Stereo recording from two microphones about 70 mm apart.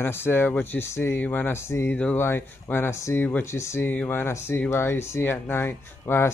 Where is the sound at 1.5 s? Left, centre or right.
Left.